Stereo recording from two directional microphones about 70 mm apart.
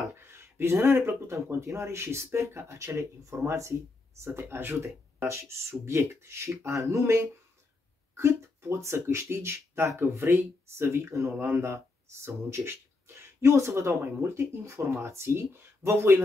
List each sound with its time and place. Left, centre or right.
0.1 s a sound: right
1.5 s speech: right
4.2 s speech: right